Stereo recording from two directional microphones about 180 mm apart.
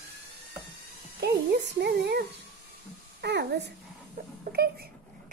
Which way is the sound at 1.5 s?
65° right (ahead or behind).